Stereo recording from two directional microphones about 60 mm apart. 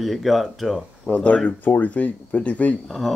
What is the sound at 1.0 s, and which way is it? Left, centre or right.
Speech, left.